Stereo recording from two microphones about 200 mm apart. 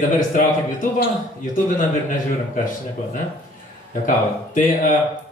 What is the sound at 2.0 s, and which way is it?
Speech, 40° left (ahead or behind).